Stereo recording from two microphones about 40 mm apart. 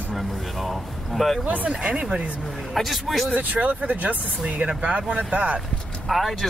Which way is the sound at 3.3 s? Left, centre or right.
Right.